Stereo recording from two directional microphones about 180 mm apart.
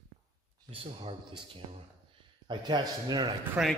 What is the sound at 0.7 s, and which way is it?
Speech, 30° right (ahead or behind).